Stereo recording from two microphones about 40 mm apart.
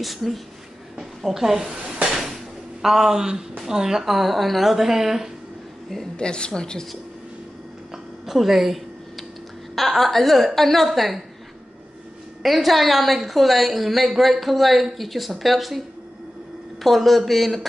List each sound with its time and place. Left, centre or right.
0.0 s a woman's voice: centre
2.0 s a sound: centre
2.8 s a woman's voice: centre
6.1 s speech: left
7.9 s a sound: centre
9.8 s a woman's voice: centre
12.4 s a woman's voice: centre
16.8 s a woman's voice: centre